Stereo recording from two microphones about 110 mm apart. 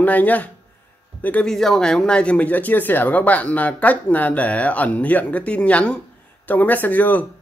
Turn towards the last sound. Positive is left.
turn(degrees=15)  # may be behind; listen again after turning